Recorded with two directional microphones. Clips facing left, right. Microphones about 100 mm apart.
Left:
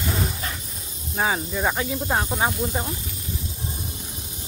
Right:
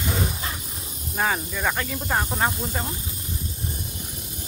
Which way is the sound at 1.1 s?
10° left (ahead or behind).